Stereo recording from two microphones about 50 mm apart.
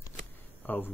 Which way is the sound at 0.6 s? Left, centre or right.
Left.